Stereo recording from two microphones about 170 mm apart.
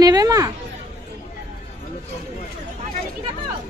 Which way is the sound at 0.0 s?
20° right (ahead or behind).